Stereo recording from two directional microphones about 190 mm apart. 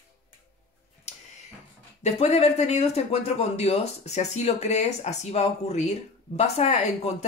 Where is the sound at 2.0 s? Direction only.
35° left (ahead or behind).